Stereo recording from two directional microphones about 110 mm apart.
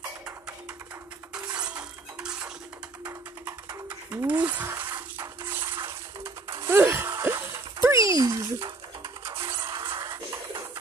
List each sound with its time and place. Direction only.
1.3 s coin: 10° right (ahead or behind)
4.1 s speech: 15° right (ahead or behind)
5.4 s coin: 20° right (ahead or behind)
6.6 s a sound: 25° right (ahead or behind)
8.5 s a sound: 45° right (ahead or behind)
9.8 s music: 45° right (ahead or behind)